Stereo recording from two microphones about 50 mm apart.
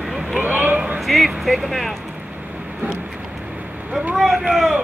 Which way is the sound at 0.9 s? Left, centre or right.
Centre.